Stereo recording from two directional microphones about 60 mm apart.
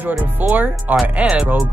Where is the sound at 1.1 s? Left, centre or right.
Centre.